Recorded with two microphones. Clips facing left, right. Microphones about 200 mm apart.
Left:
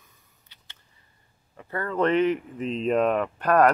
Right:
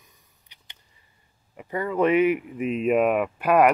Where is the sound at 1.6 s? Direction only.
15° right (ahead or behind).